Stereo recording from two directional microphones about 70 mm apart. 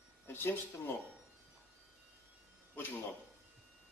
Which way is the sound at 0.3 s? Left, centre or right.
Left.